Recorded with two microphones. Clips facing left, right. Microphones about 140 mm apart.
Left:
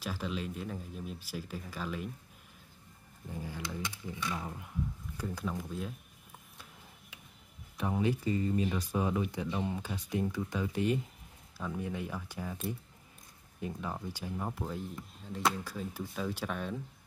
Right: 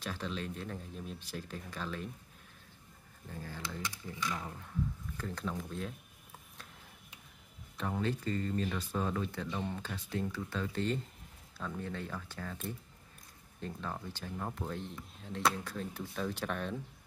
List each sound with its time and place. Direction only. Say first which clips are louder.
0.0 s speech: left 2 dB; 5° left (ahead or behind)
3.3 s speech: left 3 dB; 15° left (ahead or behind)
7.7 s speech: left 4 dB; 10° left (ahead or behind)
13.6 s speech: left 2 dB; 10° left (ahead or behind)